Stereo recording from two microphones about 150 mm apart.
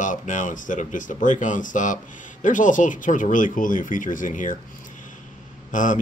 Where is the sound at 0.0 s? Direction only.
60° left (ahead or behind).